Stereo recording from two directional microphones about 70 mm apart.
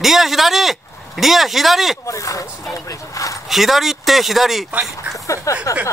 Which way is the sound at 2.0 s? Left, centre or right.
Left.